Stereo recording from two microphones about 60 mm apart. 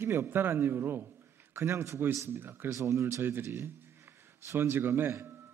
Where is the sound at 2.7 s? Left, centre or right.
Right.